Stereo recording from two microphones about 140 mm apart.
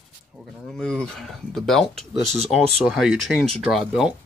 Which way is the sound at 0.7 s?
5° left (ahead or behind).